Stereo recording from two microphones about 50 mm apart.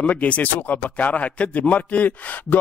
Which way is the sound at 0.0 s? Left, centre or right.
Left.